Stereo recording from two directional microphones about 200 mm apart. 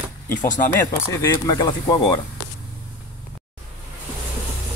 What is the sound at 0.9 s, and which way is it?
Speech, 15° left (ahead or behind).